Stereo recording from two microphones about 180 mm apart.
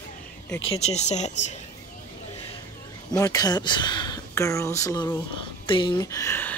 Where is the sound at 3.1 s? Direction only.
20° left (ahead or behind).